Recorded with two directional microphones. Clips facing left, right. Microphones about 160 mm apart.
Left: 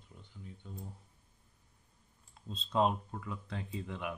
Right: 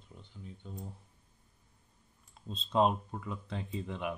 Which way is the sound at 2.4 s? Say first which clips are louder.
Right 2 dB; 20° right (ahead or behind).